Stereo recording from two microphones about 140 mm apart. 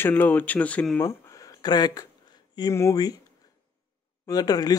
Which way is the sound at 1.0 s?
25° left (ahead or behind).